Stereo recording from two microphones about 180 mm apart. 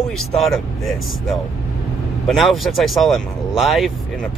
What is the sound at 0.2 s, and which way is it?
Speech, centre (ahead or behind).